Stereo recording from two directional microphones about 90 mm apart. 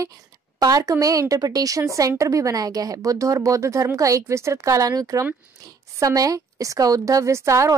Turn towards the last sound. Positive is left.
turn(degrees=-35)  # may be behind; listen again after turning